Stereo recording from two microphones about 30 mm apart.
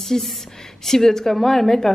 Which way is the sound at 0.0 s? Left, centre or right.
Centre.